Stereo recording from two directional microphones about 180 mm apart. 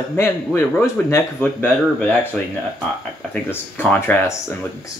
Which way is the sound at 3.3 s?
10° left (ahead or behind).